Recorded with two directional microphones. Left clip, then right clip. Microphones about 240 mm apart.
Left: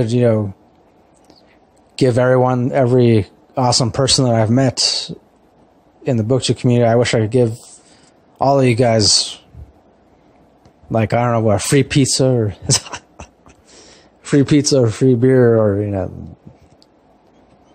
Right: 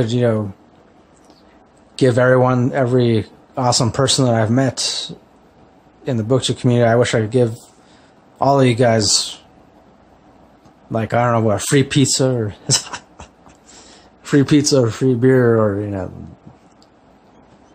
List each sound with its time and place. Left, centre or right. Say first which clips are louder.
0.0 s speech: left 2 dB; centre
2.0 s speech: even; left
10.9 s speech: left 1 dB; left